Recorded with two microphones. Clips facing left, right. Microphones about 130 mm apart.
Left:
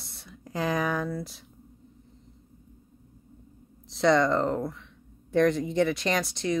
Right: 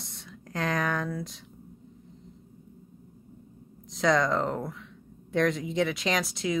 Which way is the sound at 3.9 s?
Centre (ahead or behind).